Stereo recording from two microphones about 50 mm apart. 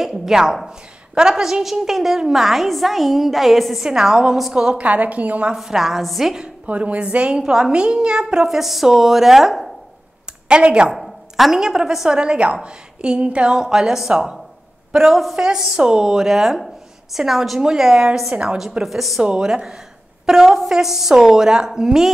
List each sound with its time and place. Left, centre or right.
0.0 s a woman's voice: centre
4.7 s a woman's voice: right
5.6 s a woman's voice: centre
6.4 s a woman's voice: right; by 9.7 s centre
10.5 s a woman's voice: centre
11.0 s speech: centre
12.2 s a woman's voice: right
18.6 s a woman's voice: centre
19.2 s a woman's voice: centre